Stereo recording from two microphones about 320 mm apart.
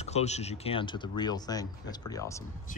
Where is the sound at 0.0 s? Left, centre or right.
Centre.